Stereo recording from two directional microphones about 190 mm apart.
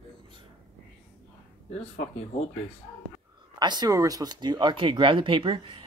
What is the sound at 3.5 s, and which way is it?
Speech, 20° right (ahead or behind).